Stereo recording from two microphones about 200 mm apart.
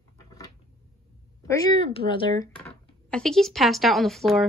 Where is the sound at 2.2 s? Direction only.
20° left (ahead or behind).